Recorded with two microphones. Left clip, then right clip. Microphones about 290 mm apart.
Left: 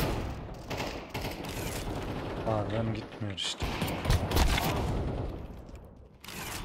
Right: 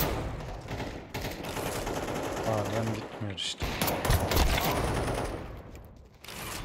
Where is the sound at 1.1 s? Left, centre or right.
Centre.